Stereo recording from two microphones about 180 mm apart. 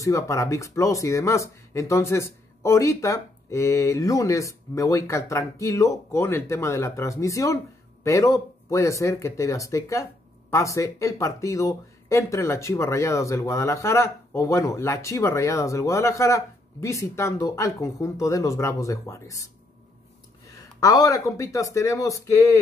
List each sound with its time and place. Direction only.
0.0 s speech: 15° left (ahead or behind)
20.8 s speech: 20° left (ahead or behind)